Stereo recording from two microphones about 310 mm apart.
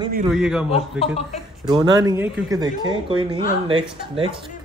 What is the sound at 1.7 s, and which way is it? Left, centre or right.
Speech, centre.